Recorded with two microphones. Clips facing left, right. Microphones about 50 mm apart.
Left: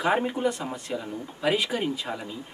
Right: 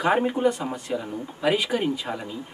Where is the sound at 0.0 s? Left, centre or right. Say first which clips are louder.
Right 3 dB; centre.